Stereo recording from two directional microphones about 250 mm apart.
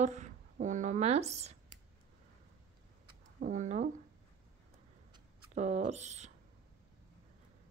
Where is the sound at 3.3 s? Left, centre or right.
Right.